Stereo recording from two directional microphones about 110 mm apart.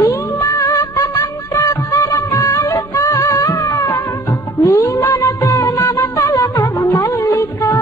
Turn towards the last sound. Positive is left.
turn(degrees=30)  # may be behind; listen again after turning